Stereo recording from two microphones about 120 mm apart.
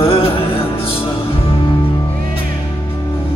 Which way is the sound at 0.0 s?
55° left (ahead or behind).